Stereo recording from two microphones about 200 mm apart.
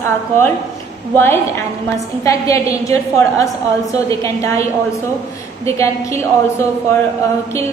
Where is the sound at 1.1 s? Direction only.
10° left (ahead or behind).